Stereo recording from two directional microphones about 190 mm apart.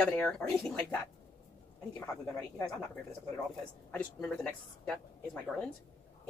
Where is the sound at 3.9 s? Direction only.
5° left (ahead or behind).